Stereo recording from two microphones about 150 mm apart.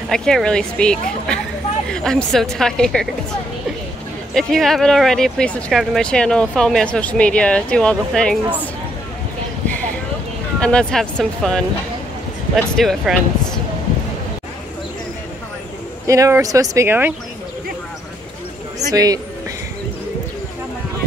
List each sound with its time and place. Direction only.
0.1 s speech: 5° left (ahead or behind)
4.3 s speech: 5° left (ahead or behind)
10.6 s speech: 5° left (ahead or behind)
12.7 s speech: centre (ahead or behind)
16.1 s speech: 20° right (ahead or behind)
18.9 s speech: 25° right (ahead or behind)